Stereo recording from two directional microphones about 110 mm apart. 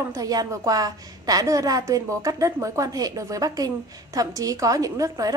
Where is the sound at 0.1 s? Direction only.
35° right (ahead or behind).